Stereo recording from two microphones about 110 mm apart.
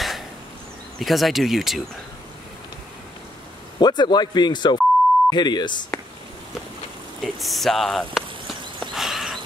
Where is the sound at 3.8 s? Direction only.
40° left (ahead or behind).